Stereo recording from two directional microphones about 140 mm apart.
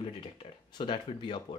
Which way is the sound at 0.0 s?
40° left (ahead or behind).